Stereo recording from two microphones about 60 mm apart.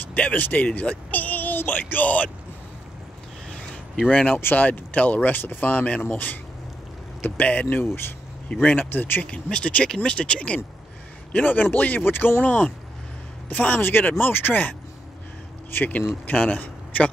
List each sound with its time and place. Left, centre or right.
0.0 s speech: left
3.4 s a sound: centre
4.1 s speech: centre
4.4 s speech: left
9.2 s speech: centre
11.3 s a man's voice: left